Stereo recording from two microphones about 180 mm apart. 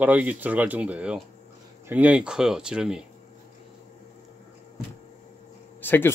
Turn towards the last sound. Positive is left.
turn(degrees=10)  # may be behind; listen again after turning